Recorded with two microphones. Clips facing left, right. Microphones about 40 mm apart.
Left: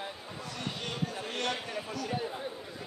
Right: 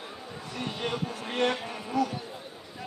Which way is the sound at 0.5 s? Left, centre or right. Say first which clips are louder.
Right 6 dB; centre.